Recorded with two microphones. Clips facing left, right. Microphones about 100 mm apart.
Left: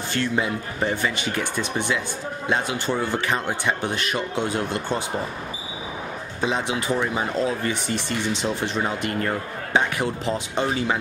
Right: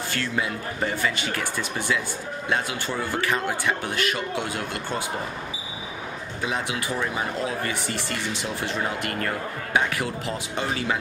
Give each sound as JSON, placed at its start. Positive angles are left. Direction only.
{"t": 0.1, "sound": "speech", "side_deg": 25}
{"t": 6.4, "sound": "speech", "side_deg": 25}